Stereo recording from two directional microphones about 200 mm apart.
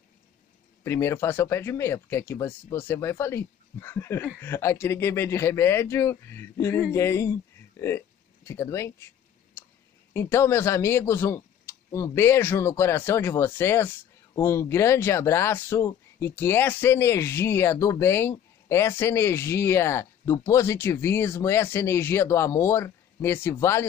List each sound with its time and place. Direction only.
0.8 s speech: 15° left (ahead or behind)
10.1 s speech: 15° left (ahead or behind)